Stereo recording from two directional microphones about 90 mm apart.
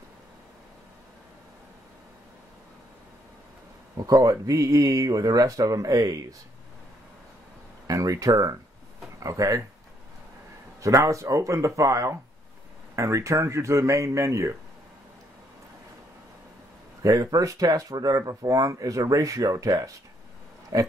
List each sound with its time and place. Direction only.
3.9 s speech: 40° right (ahead or behind)
7.8 s speech: 40° right (ahead or behind)
10.8 s speech: 35° right (ahead or behind)
17.0 s speech: 40° right (ahead or behind)